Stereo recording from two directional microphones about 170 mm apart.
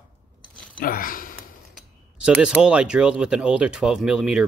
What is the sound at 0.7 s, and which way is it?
Speech, 55° left (ahead or behind).